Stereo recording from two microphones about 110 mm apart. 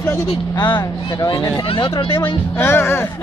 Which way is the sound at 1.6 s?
55° left (ahead or behind).